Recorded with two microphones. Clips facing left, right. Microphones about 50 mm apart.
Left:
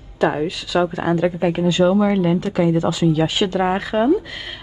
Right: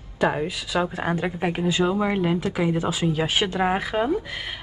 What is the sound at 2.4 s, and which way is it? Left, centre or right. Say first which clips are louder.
Speech: left 6 dB; centre.